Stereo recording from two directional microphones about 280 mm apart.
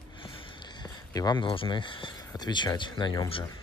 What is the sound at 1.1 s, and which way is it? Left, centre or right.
Speech, centre.